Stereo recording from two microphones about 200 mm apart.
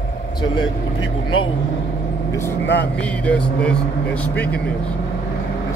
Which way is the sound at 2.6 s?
60° left (ahead or behind).